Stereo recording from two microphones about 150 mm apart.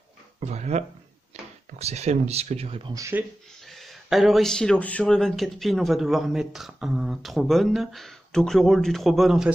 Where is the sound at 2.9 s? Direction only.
20° right (ahead or behind).